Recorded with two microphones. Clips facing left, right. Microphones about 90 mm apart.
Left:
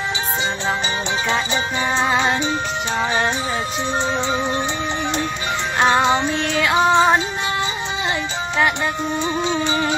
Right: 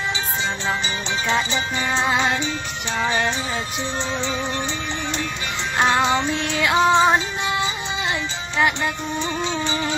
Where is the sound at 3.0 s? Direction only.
20° left (ahead or behind).